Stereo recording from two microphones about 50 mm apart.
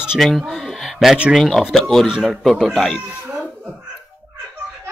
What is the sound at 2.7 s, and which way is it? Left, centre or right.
Speech, centre.